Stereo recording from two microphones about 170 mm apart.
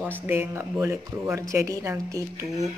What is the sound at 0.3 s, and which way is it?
Speech, 15° right (ahead or behind).